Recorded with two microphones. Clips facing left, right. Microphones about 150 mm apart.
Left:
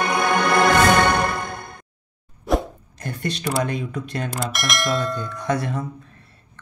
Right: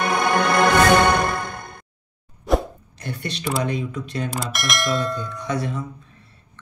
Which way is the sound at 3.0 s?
45° left (ahead or behind).